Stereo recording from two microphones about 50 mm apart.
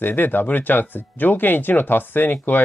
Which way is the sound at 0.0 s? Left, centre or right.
Left.